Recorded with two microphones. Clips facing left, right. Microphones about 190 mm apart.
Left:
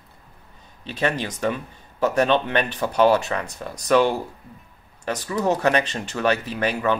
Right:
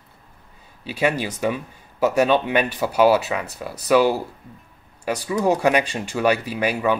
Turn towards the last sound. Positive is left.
turn(degrees=-10)  # may be behind; listen again after turning